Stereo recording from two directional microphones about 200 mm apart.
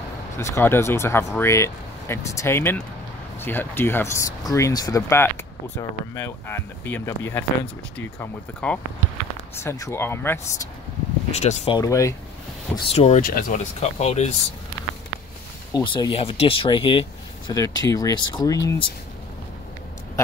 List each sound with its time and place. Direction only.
0.4 s speech: 15° left (ahead or behind)
11.3 s speech: 35° left (ahead or behind)
11.8 s speech: 15° left (ahead or behind)
12.7 s speech: 30° left (ahead or behind)
13.2 s speech: 45° left (ahead or behind)
15.7 s speech: 20° left (ahead or behind)